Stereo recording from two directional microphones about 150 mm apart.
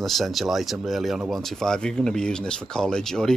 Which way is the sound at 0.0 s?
Centre (ahead or behind).